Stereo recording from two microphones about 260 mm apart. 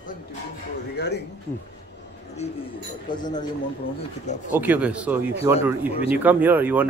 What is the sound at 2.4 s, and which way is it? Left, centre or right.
Speech, left.